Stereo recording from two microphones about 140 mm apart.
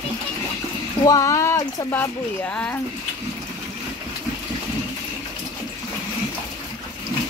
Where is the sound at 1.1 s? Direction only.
25° left (ahead or behind).